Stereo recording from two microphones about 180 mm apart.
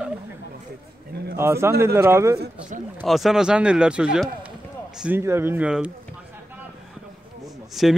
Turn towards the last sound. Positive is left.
turn(degrees=0)  # may be behind; listen again after turning